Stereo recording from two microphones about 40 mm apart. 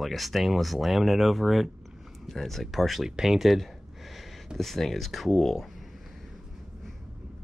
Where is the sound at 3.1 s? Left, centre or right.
Centre.